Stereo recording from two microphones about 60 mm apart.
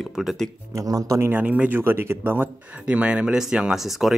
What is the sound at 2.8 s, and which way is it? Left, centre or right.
Speech, centre.